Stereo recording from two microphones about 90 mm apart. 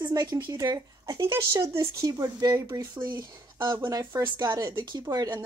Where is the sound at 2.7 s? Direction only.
50° right (ahead or behind).